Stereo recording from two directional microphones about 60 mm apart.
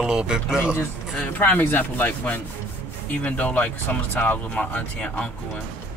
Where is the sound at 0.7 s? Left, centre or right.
Left.